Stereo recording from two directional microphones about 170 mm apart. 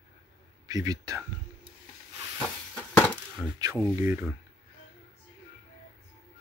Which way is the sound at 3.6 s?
20° right (ahead or behind).